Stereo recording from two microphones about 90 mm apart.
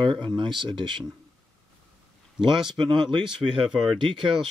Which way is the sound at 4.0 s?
65° right (ahead or behind).